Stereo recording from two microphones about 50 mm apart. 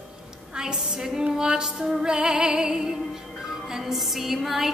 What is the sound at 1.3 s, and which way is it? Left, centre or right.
Music, centre.